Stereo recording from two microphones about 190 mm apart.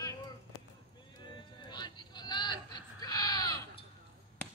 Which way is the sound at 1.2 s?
25° left (ahead or behind).